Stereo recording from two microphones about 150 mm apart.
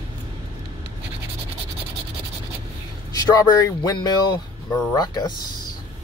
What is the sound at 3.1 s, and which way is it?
Speech, 20° left (ahead or behind).